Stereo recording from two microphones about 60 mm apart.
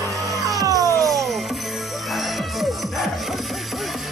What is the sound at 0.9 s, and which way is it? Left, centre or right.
Music, centre.